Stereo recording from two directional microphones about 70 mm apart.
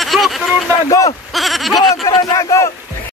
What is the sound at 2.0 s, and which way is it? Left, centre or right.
Speech, left.